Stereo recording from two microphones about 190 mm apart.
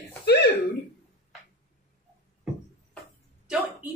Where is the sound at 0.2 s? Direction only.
60° left (ahead or behind).